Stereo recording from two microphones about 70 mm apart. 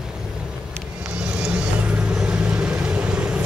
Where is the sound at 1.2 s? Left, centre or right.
Centre.